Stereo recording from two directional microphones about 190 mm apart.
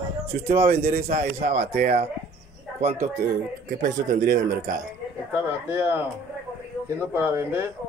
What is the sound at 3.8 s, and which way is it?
Speech, 40° right (ahead or behind).